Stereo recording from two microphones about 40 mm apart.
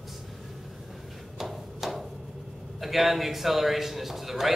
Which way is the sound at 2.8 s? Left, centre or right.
Centre.